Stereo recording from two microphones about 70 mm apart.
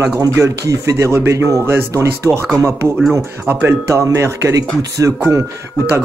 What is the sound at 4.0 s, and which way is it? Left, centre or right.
Speech, right.